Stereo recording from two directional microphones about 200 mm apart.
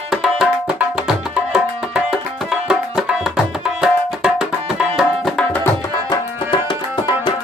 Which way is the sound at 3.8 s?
5° right (ahead or behind).